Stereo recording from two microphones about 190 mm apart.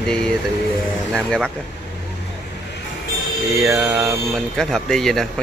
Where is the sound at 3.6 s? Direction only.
10° right (ahead or behind).